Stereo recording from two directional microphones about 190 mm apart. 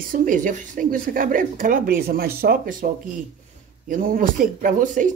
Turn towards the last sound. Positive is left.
turn(degrees=-40)  # may be behind; listen again after turning